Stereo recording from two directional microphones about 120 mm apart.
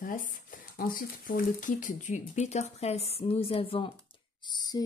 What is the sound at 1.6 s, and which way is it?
A woman's voice, 90° left.